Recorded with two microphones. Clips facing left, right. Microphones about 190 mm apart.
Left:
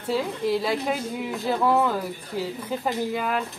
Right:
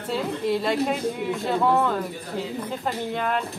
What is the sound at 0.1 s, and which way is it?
A woman's voice, centre (ahead or behind).